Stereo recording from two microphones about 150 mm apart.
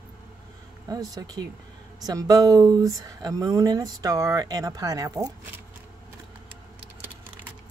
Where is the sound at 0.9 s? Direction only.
25° right (ahead or behind).